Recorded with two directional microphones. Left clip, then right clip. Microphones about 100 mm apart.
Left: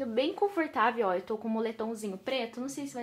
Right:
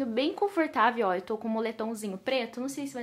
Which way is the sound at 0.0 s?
35° right (ahead or behind).